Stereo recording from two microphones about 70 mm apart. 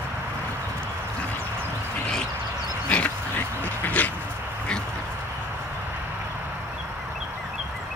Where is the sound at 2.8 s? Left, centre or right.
Centre.